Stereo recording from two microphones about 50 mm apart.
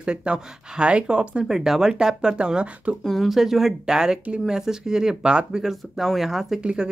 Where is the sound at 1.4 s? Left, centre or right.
Centre.